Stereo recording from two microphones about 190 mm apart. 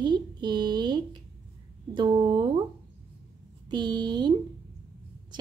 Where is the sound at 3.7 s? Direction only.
25° right (ahead or behind).